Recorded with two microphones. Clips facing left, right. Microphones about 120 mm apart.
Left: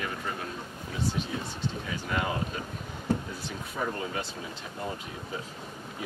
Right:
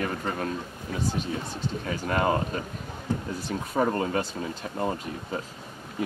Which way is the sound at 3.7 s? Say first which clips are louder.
Right 8 dB; 50° right (ahead or behind).